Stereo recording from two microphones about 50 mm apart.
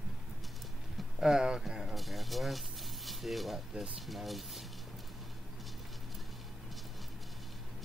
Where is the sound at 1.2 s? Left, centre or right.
Centre.